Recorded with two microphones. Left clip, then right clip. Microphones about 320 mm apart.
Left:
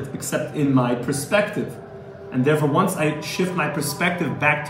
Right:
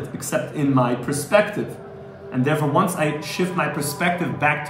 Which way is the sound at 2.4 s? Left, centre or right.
Centre.